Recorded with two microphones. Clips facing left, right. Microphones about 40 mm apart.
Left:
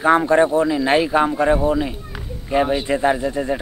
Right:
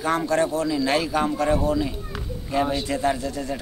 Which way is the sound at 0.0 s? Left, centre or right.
Left.